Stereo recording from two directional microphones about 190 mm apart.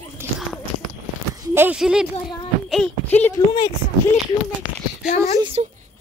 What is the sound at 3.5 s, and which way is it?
Speech, 20° left (ahead or behind).